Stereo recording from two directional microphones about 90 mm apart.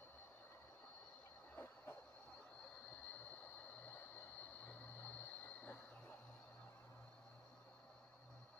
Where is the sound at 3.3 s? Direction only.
20° left (ahead or behind).